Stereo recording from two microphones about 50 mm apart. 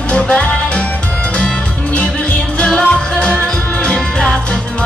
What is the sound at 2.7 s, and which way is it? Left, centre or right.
Music, left.